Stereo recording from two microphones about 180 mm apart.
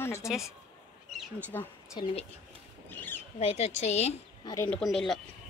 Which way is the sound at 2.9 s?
10° left (ahead or behind).